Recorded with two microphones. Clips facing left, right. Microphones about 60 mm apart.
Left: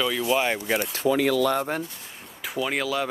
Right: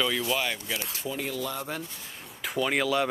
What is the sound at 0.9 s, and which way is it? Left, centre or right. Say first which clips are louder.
Speech: left 11 dB; left.